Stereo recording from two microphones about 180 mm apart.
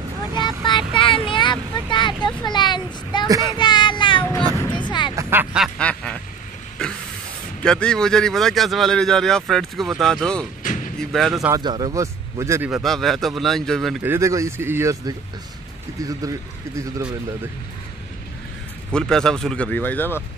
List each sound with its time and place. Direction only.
0.4 s vehicle: 25° left (ahead or behind)
3.3 s speech: 20° right (ahead or behind)
3.5 s child singing: 25° left (ahead or behind)
4.7 s a sound: 25° left (ahead or behind)
5.1 s quack: 10° right (ahead or behind)
5.8 s quack: 5° left (ahead or behind)
6.8 s vehicle: 5° left (ahead or behind)
7.6 s speech: 5° left (ahead or behind)
10.6 s slam: 45° left (ahead or behind)
11.0 s speech: centre (ahead or behind)
11.6 s speech: 25° right (ahead or behind)
12.7 s speech: centre (ahead or behind)
14.0 s speech: 15° right (ahead or behind)
18.9 s speech: 5° left (ahead or behind)